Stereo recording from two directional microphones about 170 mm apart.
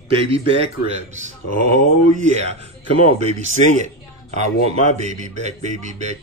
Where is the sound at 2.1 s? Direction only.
40° right (ahead or behind).